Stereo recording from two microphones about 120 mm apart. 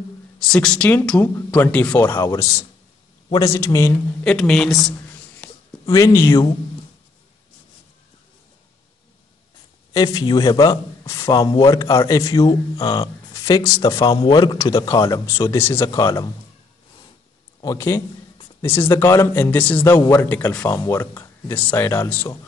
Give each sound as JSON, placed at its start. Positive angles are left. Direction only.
{"t": 0.4, "sound": "speech", "side_deg": 5}
{"t": 2.0, "sound": "a man's voice", "side_deg": 30}
{"t": 4.2, "sound": "speech", "side_deg": 5}
{"t": 5.9, "sound": "speech", "side_deg": 30}
{"t": 9.9, "sound": "a man's voice", "side_deg": 30}
{"t": 17.6, "sound": "speech", "side_deg": 25}